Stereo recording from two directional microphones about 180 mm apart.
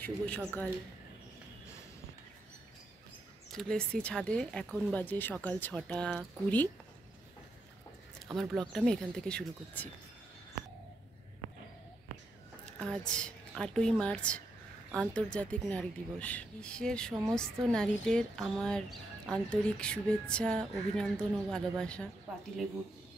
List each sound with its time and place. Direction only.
0.0 s speech: 10° left (ahead or behind)
3.5 s speech: 5° left (ahead or behind)
8.3 s speech: centre (ahead or behind)
12.7 s a woman's voice: 5° left (ahead or behind)
17.1 s speech: 20° right (ahead or behind)
17.6 s speech: 5° left (ahead or behind)